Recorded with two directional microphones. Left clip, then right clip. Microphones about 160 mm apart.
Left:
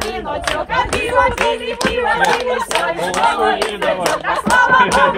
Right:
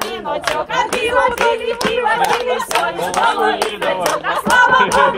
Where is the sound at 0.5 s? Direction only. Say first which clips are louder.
Even; 40° right (ahead or behind).